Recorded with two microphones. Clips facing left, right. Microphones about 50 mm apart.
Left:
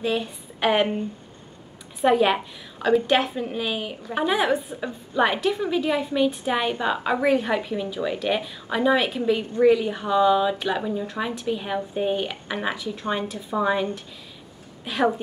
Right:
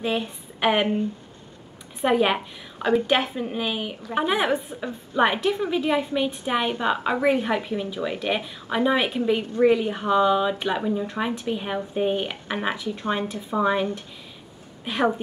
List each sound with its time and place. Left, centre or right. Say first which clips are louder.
0.0 s speech: left 1 dB; centre
2.0 s a woman's voice: left 2 dB; centre
14.9 s a woman's voice: even; centre